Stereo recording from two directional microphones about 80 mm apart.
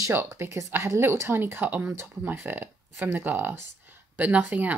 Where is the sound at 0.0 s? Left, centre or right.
Right.